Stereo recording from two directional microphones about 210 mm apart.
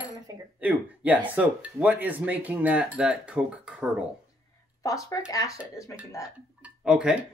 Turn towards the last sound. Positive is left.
turn(degrees=-5)  # may be behind; listen again after turning